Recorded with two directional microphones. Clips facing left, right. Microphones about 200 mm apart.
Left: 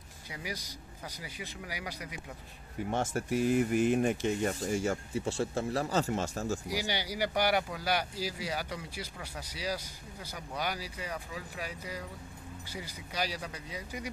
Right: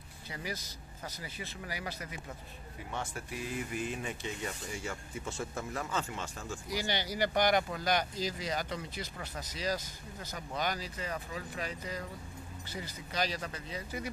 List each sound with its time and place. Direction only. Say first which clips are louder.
0.3 s speech: even; 10° left (ahead or behind)
2.9 s speech: left 9 dB; 45° left (ahead or behind)
6.7 s speech: even; 10° left (ahead or behind)